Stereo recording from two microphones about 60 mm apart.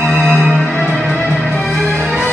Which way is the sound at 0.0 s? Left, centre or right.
Centre.